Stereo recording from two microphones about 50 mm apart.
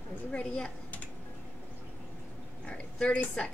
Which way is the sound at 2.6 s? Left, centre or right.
Left.